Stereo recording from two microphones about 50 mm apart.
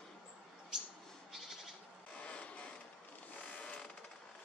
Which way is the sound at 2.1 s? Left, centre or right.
Left.